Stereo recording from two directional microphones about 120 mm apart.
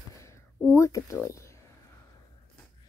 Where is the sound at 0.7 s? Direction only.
25° left (ahead or behind).